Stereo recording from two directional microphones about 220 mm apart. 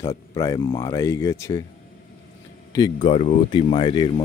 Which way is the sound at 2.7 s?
20° left (ahead or behind).